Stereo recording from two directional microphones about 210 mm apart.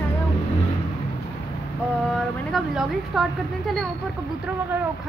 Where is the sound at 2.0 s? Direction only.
Centre (ahead or behind).